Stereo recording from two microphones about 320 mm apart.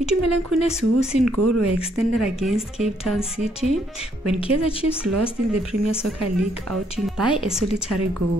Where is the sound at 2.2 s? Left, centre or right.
Centre.